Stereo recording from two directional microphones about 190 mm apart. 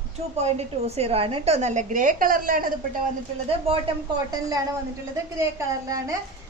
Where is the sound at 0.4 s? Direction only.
35° right (ahead or behind).